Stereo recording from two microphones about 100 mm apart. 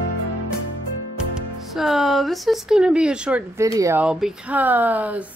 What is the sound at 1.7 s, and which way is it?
Speech, 5° right (ahead or behind).